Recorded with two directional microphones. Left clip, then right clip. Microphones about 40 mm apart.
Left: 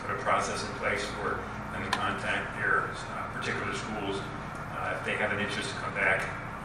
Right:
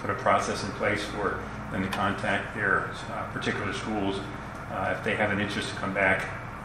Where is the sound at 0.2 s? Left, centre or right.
Right.